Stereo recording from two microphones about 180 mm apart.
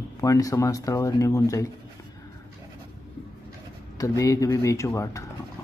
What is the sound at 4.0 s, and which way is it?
Speech, 20° left (ahead or behind).